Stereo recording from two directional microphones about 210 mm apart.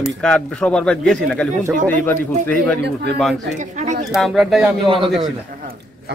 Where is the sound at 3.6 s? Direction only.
35° right (ahead or behind).